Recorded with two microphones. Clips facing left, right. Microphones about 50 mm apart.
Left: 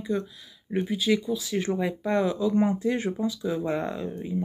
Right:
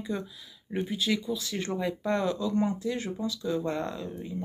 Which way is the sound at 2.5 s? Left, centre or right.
Left.